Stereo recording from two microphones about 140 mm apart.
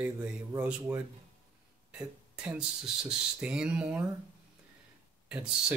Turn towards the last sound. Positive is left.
turn(degrees=-5)  # may be behind; listen again after turning